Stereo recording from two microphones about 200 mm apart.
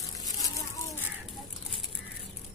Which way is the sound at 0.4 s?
15° left (ahead or behind).